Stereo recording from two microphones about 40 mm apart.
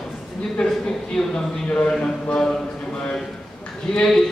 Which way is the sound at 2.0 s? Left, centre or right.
Left.